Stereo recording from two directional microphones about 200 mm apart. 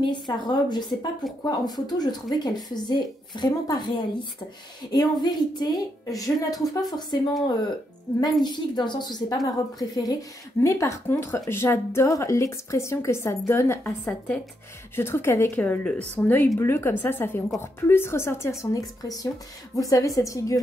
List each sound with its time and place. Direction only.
0.0 s a woman's voice: 20° left (ahead or behind)
8.5 s a woman's voice: 20° left (ahead or behind)